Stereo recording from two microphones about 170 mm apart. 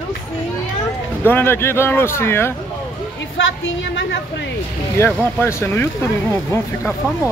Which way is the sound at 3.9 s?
90° left.